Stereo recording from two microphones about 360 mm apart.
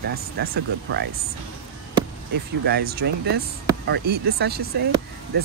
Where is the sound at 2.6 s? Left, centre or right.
Right.